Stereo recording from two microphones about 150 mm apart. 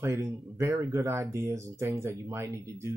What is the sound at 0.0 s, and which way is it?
Speech, 20° right (ahead or behind).